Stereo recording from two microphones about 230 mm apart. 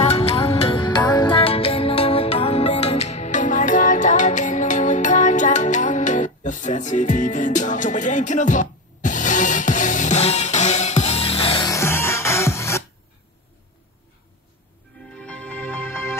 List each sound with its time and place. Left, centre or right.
0.0 s music: left
15.1 s music: centre